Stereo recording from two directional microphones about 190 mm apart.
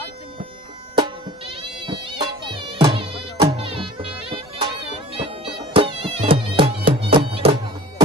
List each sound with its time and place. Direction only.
0.9 s music: 25° right (ahead or behind)